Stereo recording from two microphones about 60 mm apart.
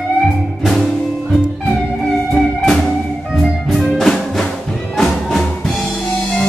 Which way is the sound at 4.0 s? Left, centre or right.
Centre.